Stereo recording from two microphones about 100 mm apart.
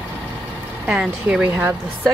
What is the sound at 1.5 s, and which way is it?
Speech, 20° right (ahead or behind).